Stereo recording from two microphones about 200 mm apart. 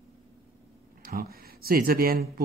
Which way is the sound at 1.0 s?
50° right (ahead or behind).